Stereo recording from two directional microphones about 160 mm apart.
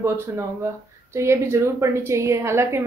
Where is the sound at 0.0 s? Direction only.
15° right (ahead or behind).